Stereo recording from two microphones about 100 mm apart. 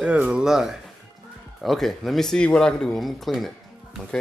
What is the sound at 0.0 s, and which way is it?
Speech, 10° right (ahead or behind).